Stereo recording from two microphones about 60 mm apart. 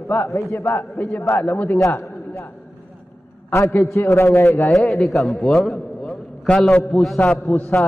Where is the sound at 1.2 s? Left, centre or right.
Left.